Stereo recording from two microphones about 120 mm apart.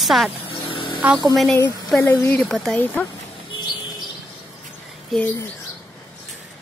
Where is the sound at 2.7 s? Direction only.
10° left (ahead or behind).